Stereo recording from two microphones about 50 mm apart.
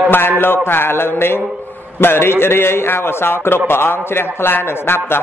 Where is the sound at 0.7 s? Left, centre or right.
Left.